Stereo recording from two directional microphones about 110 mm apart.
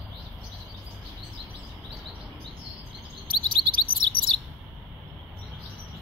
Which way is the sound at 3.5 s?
45° right (ahead or behind).